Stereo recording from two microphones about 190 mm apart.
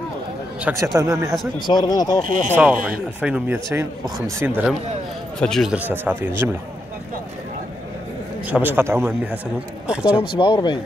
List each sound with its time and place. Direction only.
0.9 s speech: 15° right (ahead or behind)
1.7 s speech: 20° left (ahead or behind)
2.5 s speech: 5° right (ahead or behind)
5.4 s speech: centre (ahead or behind)
8.5 s speech: 10° right (ahead or behind)
10.3 s speech: 25° left (ahead or behind)